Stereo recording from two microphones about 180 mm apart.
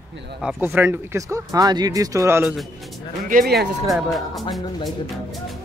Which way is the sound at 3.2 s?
55° right (ahead or behind).